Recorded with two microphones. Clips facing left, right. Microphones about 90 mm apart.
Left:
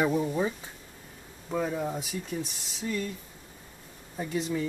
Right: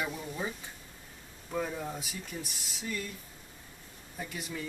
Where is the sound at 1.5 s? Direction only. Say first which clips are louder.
Left 5 dB; 10° left (ahead or behind).